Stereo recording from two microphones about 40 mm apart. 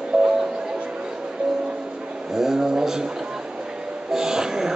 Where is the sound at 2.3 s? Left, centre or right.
Centre.